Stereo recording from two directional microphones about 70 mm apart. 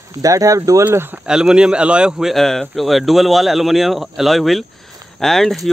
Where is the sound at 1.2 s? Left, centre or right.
Centre.